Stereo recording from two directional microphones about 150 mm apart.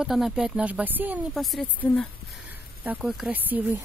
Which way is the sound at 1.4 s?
Centre (ahead or behind).